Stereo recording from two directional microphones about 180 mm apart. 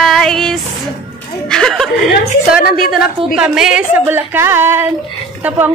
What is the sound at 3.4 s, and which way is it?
A woman's voice, 5° right (ahead or behind).